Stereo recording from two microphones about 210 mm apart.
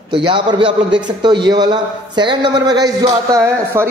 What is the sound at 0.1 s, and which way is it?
A woman's voice, 25° right (ahead or behind).